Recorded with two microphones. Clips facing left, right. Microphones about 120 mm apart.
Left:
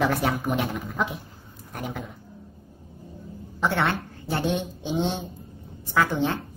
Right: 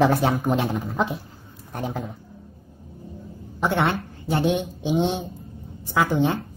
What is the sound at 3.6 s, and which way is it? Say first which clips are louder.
A woman's voice: right 2 dB; 15° right (ahead or behind).